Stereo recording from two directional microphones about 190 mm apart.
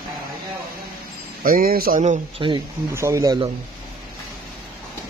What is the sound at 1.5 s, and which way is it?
Speech, 50° right (ahead or behind).